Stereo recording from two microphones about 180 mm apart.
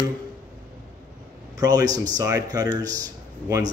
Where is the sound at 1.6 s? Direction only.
20° right (ahead or behind).